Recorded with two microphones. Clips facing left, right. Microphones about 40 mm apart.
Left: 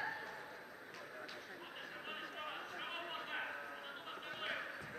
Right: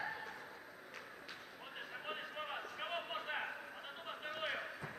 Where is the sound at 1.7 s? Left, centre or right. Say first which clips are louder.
Right 4 dB; centre.